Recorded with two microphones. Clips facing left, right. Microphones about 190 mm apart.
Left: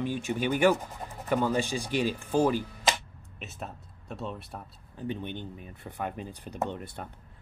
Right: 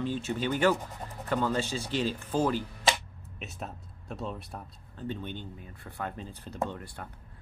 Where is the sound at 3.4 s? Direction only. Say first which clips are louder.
Even; centre (ahead or behind).